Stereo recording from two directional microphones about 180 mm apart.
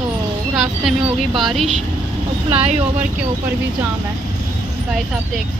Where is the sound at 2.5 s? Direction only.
35° right (ahead or behind).